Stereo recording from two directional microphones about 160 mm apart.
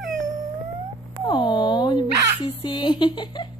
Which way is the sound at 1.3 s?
30° left (ahead or behind).